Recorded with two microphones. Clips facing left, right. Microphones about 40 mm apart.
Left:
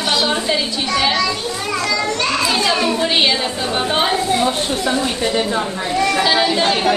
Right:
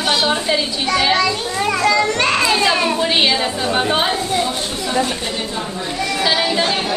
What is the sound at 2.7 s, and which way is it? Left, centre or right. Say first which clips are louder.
A woman's voice: even; centre.